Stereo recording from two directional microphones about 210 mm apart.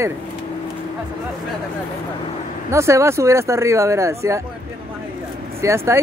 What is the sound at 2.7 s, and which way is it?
Speech, 15° right (ahead or behind).